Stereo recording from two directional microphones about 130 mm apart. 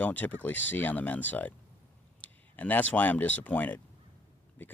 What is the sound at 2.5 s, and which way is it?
Speech, 10° left (ahead or behind).